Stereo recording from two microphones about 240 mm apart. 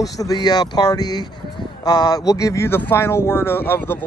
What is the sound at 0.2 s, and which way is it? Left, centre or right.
Speech, centre.